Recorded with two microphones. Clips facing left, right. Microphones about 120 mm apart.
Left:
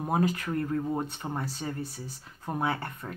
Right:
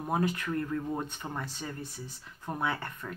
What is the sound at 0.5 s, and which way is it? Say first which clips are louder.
Speech: left 3 dB; 30° left (ahead or behind).